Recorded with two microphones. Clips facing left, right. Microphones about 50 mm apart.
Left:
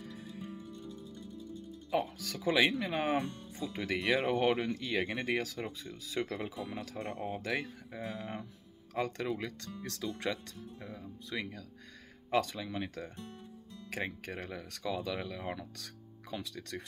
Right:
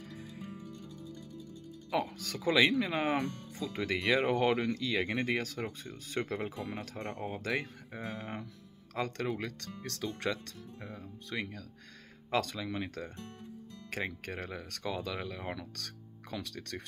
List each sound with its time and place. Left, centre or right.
0.0 s music: right
0.8 s music: left
1.9 s speech: right
10.8 s speech: right
15.7 s speech: right